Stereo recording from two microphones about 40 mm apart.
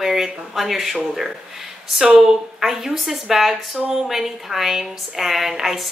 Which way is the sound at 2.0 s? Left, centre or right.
Right.